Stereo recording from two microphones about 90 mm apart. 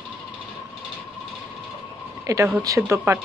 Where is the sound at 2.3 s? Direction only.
35° right (ahead or behind).